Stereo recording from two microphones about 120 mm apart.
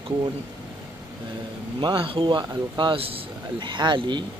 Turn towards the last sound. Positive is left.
turn(degrees=-40)  # may be behind; listen again after turning